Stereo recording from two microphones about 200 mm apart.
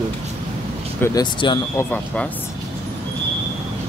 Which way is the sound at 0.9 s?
15° left (ahead or behind).